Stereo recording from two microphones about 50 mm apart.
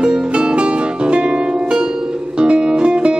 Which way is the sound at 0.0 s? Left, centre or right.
Centre.